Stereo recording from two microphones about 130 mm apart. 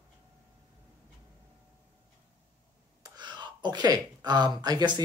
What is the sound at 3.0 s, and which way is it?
Speech, 35° right (ahead or behind).